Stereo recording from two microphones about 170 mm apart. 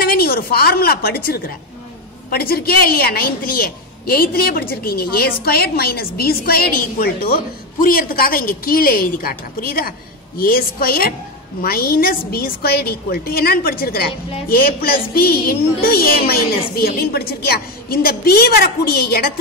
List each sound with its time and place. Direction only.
0.0 s a woman's voice: 60° left (ahead or behind)